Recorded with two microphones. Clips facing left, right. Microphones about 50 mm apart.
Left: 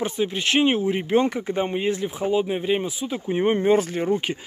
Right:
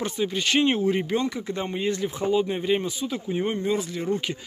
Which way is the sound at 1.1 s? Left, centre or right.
Left.